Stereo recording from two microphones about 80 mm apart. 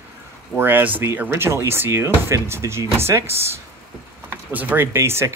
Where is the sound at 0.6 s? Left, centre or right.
Right.